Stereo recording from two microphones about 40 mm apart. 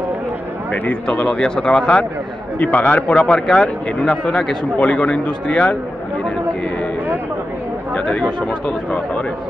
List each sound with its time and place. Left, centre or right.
1.1 s speech: left
1.4 s speech: centre
1.7 s a man's voice: left
4.0 s speech: centre
4.7 s a man's voice: left
7.9 s speech: left